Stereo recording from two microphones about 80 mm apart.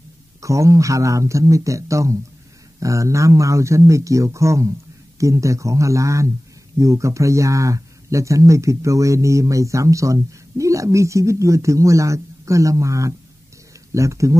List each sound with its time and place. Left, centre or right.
0.4 s speech: right